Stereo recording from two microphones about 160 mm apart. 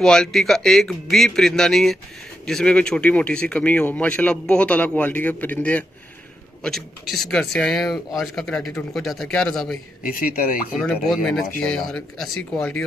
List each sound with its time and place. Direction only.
0.0 s speech: 5° left (ahead or behind)
10.0 s speech: 60° left (ahead or behind)
10.7 s speech: 5° left (ahead or behind)